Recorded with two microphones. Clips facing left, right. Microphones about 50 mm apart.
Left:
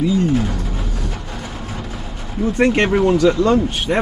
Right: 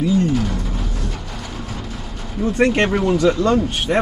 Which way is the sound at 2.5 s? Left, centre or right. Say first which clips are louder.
Left 1 dB; centre.